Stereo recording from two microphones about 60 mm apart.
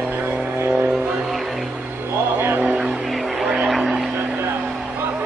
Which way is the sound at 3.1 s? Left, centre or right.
Centre.